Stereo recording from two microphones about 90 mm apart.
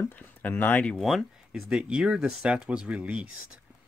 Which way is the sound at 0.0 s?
20° left (ahead or behind).